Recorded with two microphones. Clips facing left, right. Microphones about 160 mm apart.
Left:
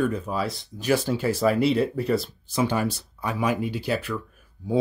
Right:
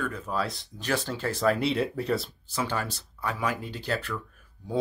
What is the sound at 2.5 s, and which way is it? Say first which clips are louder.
Speech: left 7 dB; 15° left (ahead or behind).